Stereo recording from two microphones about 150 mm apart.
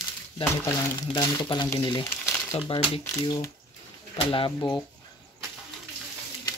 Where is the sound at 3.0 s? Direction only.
20° left (ahead or behind).